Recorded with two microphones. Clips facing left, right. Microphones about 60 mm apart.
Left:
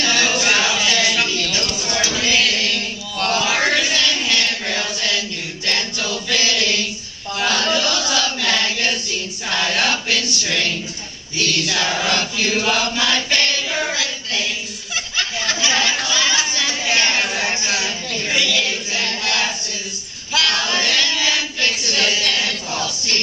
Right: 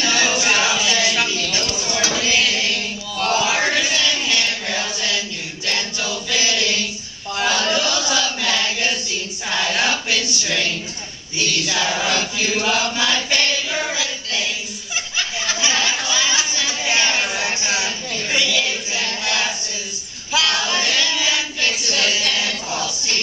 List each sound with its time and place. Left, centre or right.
0.0 s music: centre
1.6 s a sound: centre
2.1 s chant: centre
5.7 s choir: centre
7.3 s chant: centre
9.5 s choir: centre
11.3 s chant: centre
13.7 s child singing: centre
13.9 s child singing: centre
15.1 s a sound: centre
21.9 s a sound: centre